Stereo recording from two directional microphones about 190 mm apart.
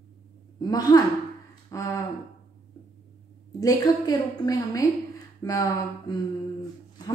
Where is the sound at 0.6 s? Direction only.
20° left (ahead or behind).